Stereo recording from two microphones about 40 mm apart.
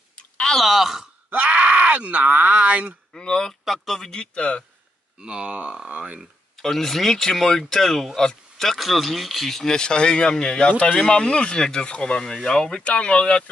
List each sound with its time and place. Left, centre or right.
0.6 s speech: centre
1.3 s speech: right
3.2 s speech: centre
3.6 s speech: centre
4.1 s speech: left
5.2 s speech: right
6.6 s speech: centre
9.5 s speech: centre
12.8 s speech: left